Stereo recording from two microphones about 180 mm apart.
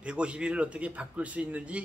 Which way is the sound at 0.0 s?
5° right (ahead or behind).